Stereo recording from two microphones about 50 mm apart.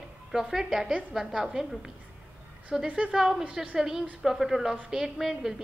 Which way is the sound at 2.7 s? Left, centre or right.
Centre.